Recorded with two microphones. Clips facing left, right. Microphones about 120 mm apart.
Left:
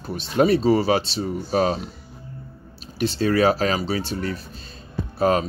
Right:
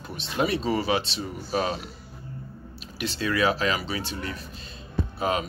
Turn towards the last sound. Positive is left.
turn(degrees=40)  # may be behind; listen again after turning